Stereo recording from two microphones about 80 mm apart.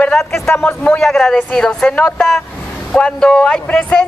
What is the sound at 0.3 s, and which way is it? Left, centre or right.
Speech, left.